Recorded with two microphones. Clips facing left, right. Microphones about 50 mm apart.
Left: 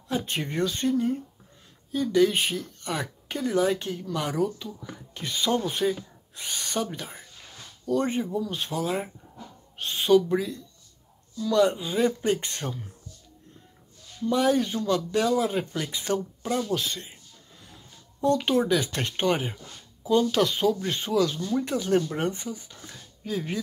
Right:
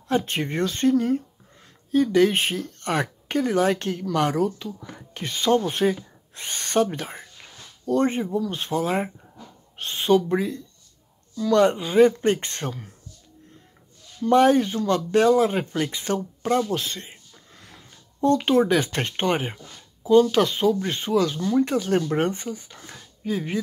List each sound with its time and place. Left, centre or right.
0.3 s speech: right
2.6 s speech: right
4.3 s speech: right
6.3 s speech: right
7.8 s speech: right
11.3 s speech: right
14.2 s speech: right
17.6 s a sound: right
18.4 s speech: right
22.0 s speech: right